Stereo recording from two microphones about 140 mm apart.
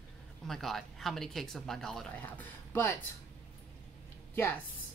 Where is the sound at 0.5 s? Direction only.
Centre (ahead or behind).